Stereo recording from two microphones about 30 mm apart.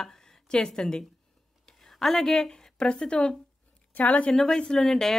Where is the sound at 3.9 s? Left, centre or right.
Left.